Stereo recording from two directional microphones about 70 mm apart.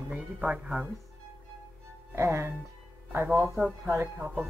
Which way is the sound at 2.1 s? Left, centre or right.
Right.